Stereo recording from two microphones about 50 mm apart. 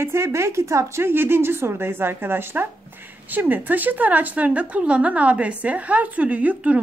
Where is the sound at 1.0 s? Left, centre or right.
Right.